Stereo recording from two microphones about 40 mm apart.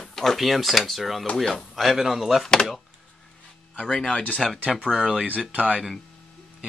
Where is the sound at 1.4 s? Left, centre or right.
Centre.